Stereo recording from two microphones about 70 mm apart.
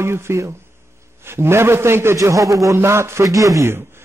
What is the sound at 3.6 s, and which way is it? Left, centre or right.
Speech, right.